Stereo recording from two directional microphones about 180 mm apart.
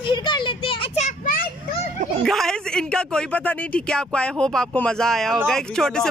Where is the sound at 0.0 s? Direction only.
25° left (ahead or behind); by 1.8 s 45° left (ahead or behind).